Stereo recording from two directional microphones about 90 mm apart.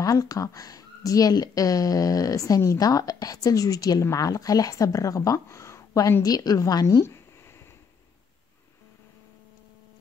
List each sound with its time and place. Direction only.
0.0 s speech: 40° left (ahead or behind)